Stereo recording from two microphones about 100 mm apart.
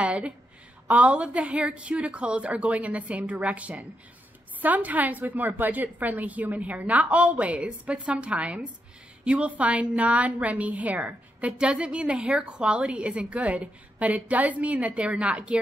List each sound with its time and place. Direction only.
0.0 s a woman's voice: 10° right (ahead or behind)